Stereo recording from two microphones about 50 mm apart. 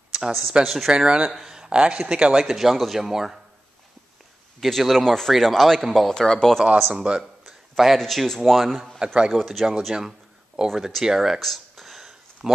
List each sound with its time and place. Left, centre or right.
0.3 s speech: centre
0.9 s speech: centre
1.3 s a sound: centre
1.7 s speech: right
4.6 s speech: centre
7.0 s a sound: centre
8.0 s speech: centre
9.0 s speech: centre
9.3 s speech: centre
9.9 s a sound: centre
11.1 s speech: centre
11.3 s a sound: centre
12.4 s speech: right